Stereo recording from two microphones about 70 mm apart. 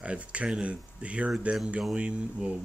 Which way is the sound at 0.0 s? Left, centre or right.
Centre.